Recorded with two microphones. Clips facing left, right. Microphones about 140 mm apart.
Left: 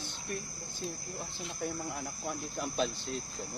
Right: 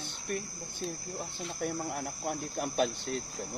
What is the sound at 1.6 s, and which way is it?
Cricket, 60° right (ahead or behind).